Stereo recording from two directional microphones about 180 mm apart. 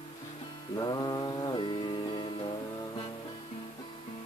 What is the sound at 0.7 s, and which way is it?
Music, 20° left (ahead or behind).